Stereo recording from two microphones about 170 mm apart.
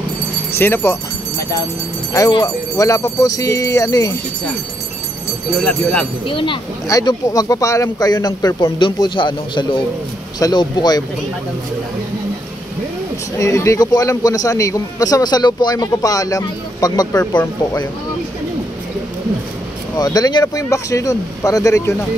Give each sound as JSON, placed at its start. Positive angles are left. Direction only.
{"t": 0.6, "sound": "speech", "side_deg": 15}
{"t": 2.1, "sound": "a man's voice", "side_deg": 20}
{"t": 5.7, "sound": "speech", "side_deg": 5}
{"t": 6.2, "sound": "a man's voice", "side_deg": 30}
{"t": 13.4, "sound": "a man's voice", "side_deg": 15}
{"t": 20.0, "sound": "a man's voice", "side_deg": 25}